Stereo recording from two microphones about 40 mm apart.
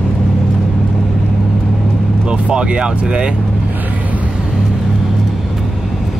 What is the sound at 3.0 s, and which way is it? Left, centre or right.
Speech, right.